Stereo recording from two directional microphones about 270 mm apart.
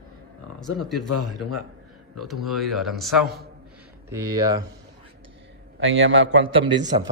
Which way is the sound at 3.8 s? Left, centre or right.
Centre.